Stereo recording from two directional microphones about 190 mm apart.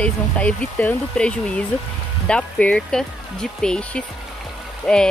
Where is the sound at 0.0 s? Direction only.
5° left (ahead or behind).